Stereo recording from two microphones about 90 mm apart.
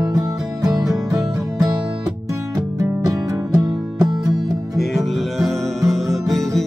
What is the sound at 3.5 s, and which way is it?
Music, 45° right (ahead or behind).